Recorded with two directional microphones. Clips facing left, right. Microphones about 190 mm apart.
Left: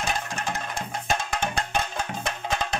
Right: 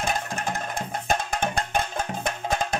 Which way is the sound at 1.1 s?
50° right (ahead or behind).